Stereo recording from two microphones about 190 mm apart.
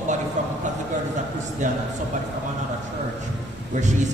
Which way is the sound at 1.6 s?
40° right (ahead or behind).